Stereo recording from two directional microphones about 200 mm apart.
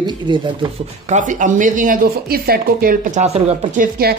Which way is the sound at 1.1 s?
40° right (ahead or behind).